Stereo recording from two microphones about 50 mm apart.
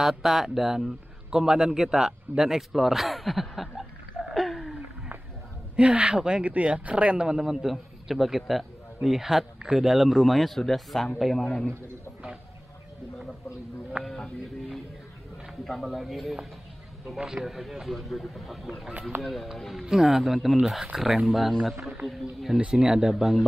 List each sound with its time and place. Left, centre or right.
0.0 s a man's voice: centre
2.7 s a man's voice: centre
4.3 s a sound: centre
5.8 s speech: right
7.2 s a man's voice: centre
14.0 s speech: centre
15.6 s a man's voice: centre
17.2 s a man's voice: centre
17.5 s a man's voice: centre